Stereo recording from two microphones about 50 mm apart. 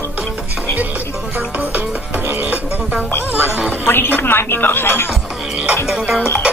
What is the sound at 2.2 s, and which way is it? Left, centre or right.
Music, right.